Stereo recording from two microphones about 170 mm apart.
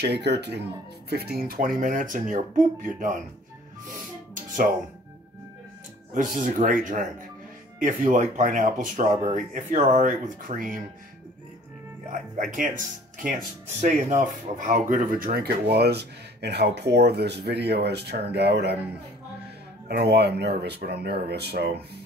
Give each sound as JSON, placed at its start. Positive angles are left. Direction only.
{"t": 0.0, "sound": "speech", "side_deg": -80}
{"t": 1.1, "sound": "speech", "side_deg": -65}
{"t": 6.1, "sound": "speech", "side_deg": -50}
{"t": 12.1, "sound": "speech", "side_deg": -50}
{"t": 19.9, "sound": "speech", "side_deg": -75}